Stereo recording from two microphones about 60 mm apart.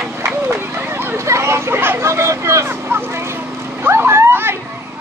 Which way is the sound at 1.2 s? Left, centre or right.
Right.